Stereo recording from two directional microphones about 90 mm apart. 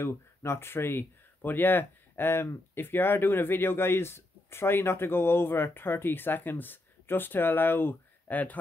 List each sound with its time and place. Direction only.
0.0 s speech: 30° left (ahead or behind)